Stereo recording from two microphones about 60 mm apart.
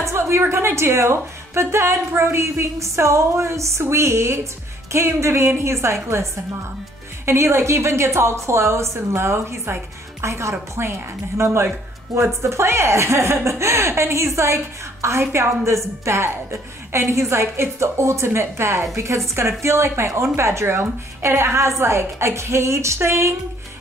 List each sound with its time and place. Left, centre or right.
0.0 s a woman's voice: right